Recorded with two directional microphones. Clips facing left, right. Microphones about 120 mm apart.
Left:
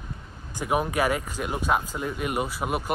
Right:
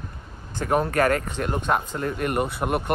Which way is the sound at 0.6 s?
10° left (ahead or behind).